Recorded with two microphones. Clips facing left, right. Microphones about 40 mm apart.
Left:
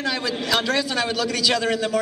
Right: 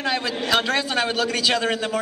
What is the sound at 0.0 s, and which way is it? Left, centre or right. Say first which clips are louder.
A man's voice: right 1 dB; centre.